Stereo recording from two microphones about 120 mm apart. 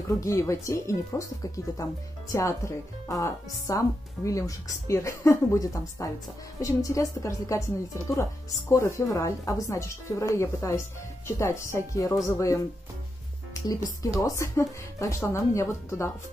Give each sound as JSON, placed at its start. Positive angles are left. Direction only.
{"t": 0.2, "sound": "speech", "side_deg": 25}